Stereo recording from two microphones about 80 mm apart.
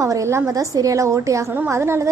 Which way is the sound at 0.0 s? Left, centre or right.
Right.